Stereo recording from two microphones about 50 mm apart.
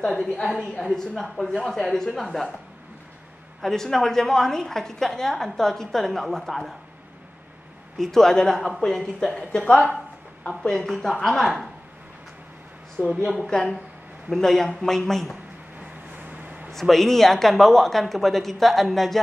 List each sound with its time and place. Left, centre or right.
0.1 s a woman's voice: centre
3.6 s a woman's voice: centre
8.0 s a woman's voice: centre
10.6 s a woman's voice: centre
13.0 s a woman's voice: right
13.5 s a woman's voice: centre
15.8 s vehicle: right
16.7 s speech: centre